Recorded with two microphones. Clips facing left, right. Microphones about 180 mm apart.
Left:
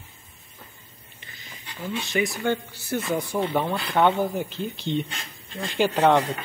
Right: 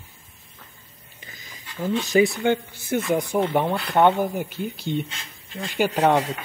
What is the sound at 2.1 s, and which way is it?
Speech, 25° right (ahead or behind).